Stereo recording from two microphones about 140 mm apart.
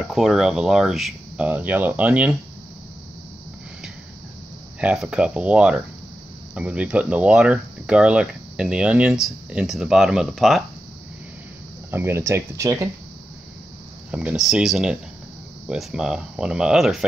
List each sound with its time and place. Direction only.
0.1 s speech: centre (ahead or behind)
4.7 s speech: 10° right (ahead or behind)
11.9 s speech: 15° right (ahead or behind)
14.1 s speech: 5° right (ahead or behind)